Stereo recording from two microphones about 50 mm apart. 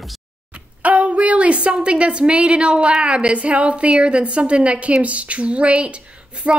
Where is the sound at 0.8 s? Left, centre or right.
Right.